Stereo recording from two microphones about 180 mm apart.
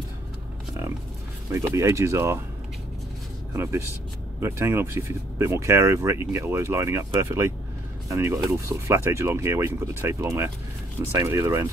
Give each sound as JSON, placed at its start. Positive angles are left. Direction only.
{"t": 1.5, "sound": "speech", "side_deg": -15}
{"t": 4.4, "sound": "speech", "side_deg": -15}